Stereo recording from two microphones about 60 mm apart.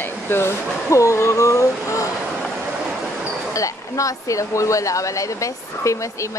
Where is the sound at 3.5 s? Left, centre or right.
Left.